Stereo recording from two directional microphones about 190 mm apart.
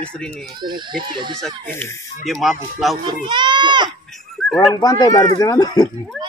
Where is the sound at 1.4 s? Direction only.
5° left (ahead or behind).